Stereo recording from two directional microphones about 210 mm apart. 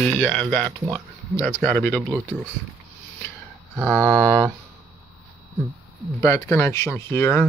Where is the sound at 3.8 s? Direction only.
10° left (ahead or behind).